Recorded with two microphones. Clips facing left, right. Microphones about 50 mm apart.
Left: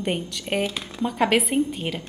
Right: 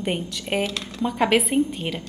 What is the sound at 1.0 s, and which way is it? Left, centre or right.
A woman's voice, centre.